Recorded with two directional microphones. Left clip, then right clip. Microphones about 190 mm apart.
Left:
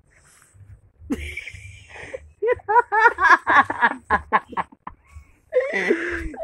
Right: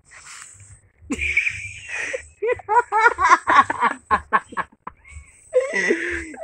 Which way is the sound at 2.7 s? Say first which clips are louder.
Even; 15° left (ahead or behind).